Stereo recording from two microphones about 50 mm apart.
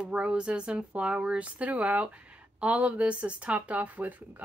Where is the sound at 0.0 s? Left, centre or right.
Right.